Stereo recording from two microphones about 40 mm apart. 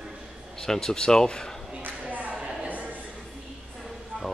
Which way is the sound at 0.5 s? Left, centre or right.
Centre.